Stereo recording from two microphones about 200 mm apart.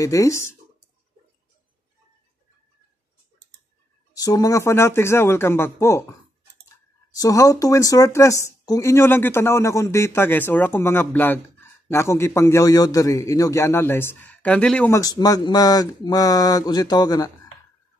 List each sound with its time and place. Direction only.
0.0 s speech: 15° left (ahead or behind)
4.1 s speech: 20° left (ahead or behind)
7.2 s speech: 15° left (ahead or behind)
15.0 s speech: 20° left (ahead or behind)